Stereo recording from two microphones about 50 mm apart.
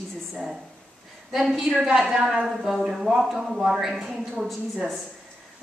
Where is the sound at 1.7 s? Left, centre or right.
Centre.